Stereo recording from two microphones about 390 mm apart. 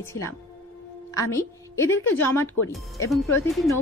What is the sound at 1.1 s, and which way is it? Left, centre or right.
Speech, centre.